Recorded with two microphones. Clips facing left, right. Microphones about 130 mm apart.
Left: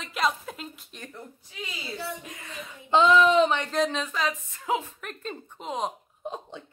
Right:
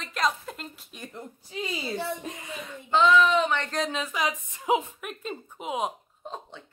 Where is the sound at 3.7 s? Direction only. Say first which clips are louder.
Left 3 dB; centre (ahead or behind); by 4.8 s 20° right (ahead or behind).